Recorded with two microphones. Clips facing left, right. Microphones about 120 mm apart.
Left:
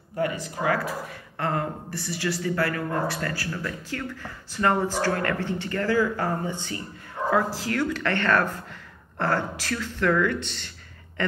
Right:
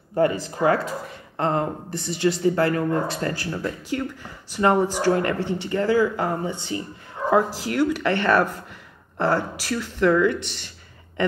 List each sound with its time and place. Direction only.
0.1 s speech: 35° right (ahead or behind); by 10.7 s 15° right (ahead or behind)